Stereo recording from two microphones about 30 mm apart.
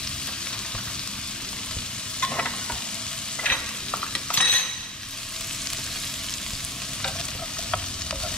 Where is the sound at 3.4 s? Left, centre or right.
Left.